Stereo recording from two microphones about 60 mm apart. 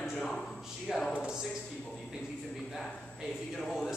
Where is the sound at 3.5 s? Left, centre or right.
Centre.